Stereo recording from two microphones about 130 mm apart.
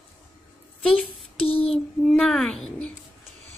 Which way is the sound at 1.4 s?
45° left (ahead or behind).